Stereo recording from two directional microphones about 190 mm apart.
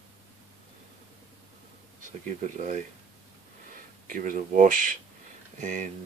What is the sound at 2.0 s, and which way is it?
Speech, 40° right (ahead or behind).